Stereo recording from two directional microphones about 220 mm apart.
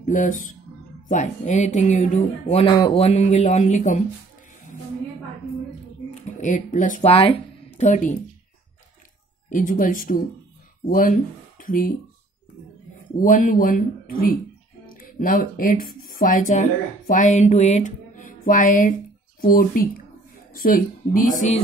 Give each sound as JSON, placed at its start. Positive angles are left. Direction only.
{"t": 0.0, "sound": "speech", "side_deg": 35}
{"t": 6.2, "sound": "speech", "side_deg": 35}
{"t": 9.5, "sound": "speech", "side_deg": 40}
{"t": 13.1, "sound": "speech", "side_deg": 35}